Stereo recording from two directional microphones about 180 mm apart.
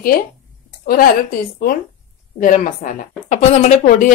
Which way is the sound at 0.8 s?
55° left (ahead or behind).